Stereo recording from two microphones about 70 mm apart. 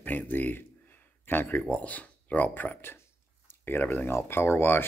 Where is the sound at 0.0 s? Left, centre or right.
Left.